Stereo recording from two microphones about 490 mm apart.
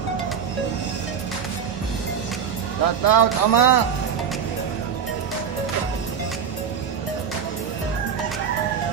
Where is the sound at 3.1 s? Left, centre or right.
Left.